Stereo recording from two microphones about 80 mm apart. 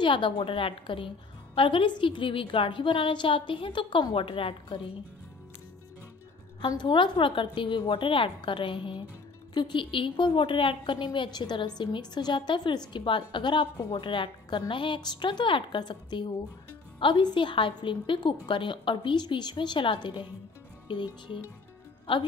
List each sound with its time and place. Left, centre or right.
0.0 s a woman's voice: left
6.8 s a woman's voice: left
9.5 s a woman's voice: left
11.3 s a woman's voice: left
12.9 s a woman's voice: left